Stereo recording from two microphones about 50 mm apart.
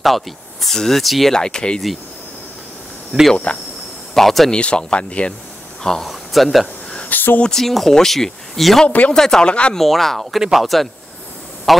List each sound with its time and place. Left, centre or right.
0.0 s speech: centre
1.3 s speech: centre
3.1 s speech: right
4.1 s speech: centre
4.5 s speech: centre
5.9 s speech: centre
7.0 s a sound: left
7.4 s speech: centre
8.8 s speech: left
9.1 s speech: centre
9.5 s speech: left
9.8 s a man's voice: centre